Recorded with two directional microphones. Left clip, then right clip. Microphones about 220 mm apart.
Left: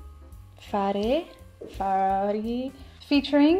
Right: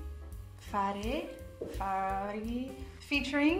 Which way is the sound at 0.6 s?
25° left (ahead or behind).